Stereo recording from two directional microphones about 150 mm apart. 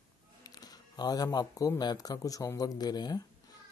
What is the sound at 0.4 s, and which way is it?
Speech, 25° left (ahead or behind).